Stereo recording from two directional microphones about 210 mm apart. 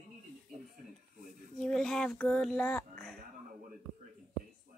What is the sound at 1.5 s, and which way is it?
Speech, 5° left (ahead or behind).